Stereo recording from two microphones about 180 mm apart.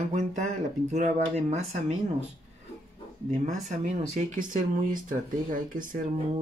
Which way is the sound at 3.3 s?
40° right (ahead or behind).